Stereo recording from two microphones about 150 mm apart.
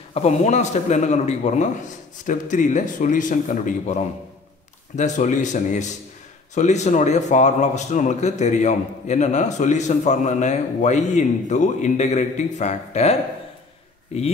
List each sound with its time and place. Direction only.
0.1 s a man's voice: 50° left (ahead or behind)